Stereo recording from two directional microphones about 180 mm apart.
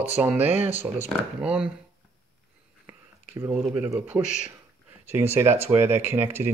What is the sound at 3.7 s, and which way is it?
Speech, 10° right (ahead or behind).